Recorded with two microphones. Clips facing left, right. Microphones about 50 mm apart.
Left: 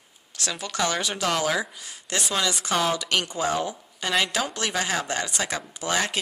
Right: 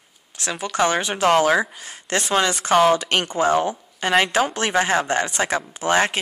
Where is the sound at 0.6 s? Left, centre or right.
Right.